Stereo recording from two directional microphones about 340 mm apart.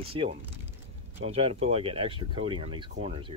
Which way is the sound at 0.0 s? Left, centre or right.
Centre.